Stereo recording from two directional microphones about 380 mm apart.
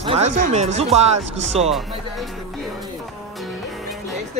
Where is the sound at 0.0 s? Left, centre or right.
Centre.